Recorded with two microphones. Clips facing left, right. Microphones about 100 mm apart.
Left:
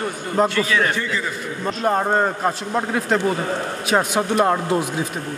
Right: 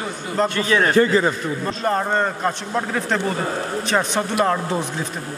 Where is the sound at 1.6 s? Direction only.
10° left (ahead or behind).